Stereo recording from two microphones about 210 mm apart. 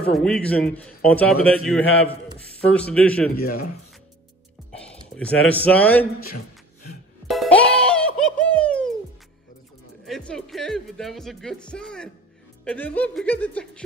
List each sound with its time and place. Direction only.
0.1 s speech: 5° left (ahead or behind)
3.4 s speech: 45° left (ahead or behind)
5.1 s speech: 5° left (ahead or behind)
7.2 s music: 5° left (ahead or behind)
10.0 s speech: centre (ahead or behind)